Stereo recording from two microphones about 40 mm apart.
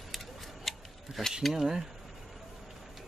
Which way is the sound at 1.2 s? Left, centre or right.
Centre.